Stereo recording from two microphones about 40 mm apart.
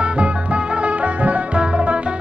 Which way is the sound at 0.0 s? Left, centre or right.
Right.